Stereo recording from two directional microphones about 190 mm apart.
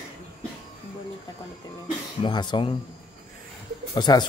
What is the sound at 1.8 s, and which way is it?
Speech, 25° left (ahead or behind).